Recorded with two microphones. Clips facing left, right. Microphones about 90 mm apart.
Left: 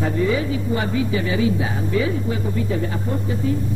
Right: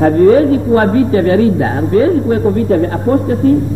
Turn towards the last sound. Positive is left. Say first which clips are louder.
# right 13 dB
turn(degrees=-50)  # may be behind; listen again after turning